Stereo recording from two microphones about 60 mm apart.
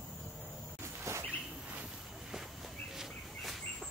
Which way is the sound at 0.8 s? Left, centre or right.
Right.